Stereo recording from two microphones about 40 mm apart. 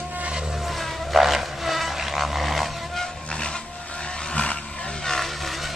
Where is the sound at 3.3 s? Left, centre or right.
Left.